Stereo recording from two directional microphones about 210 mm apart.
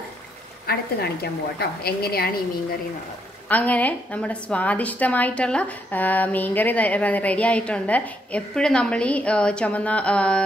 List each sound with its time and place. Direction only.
0.7 s speech: 45° left (ahead or behind)
3.4 s a woman's voice: 5° left (ahead or behind)